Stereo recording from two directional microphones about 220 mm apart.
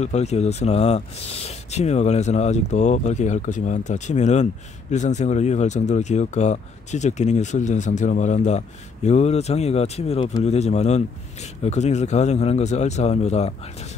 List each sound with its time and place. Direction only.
0.0 s speech: 30° left (ahead or behind)